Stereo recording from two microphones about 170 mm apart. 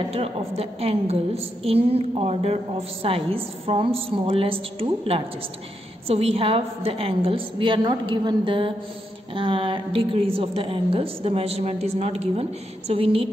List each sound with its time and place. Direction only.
0.1 s a woman's voice: 35° right (ahead or behind)